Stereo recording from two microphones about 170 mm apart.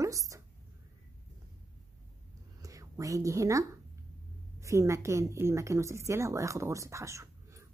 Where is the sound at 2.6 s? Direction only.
20° right (ahead or behind).